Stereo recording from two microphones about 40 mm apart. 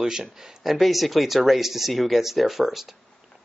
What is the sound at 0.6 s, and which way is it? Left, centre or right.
Speech, centre.